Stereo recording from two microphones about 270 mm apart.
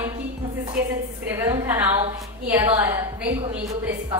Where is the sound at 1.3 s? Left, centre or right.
Centre.